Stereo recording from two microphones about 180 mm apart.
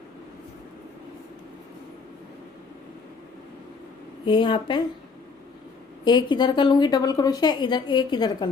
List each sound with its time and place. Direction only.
4.3 s a woman's voice: 25° left (ahead or behind)
6.0 s a woman's voice: 25° left (ahead or behind)